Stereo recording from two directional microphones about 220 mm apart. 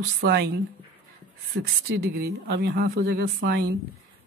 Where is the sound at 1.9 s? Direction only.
45° right (ahead or behind).